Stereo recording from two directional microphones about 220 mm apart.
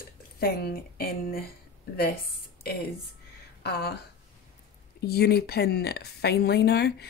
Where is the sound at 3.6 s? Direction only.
45° left (ahead or behind).